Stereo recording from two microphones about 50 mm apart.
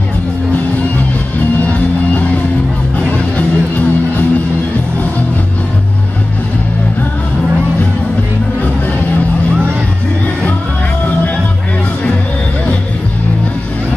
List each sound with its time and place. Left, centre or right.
3.0 s music: left